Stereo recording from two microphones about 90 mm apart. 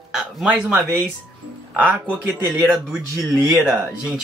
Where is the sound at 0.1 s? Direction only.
10° right (ahead or behind).